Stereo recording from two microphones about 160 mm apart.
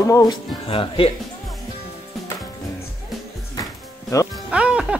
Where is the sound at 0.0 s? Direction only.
20° left (ahead or behind).